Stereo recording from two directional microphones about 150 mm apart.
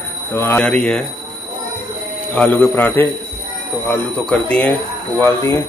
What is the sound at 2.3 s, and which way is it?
Speech, 10° left (ahead or behind).